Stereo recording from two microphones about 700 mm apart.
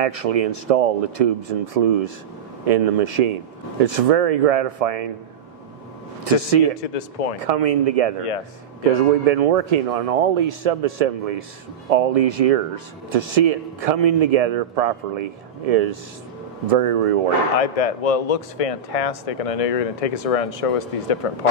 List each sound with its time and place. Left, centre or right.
0.0 s speech: right
6.8 s speech: left
7.3 s speech: right
17.6 s speech: left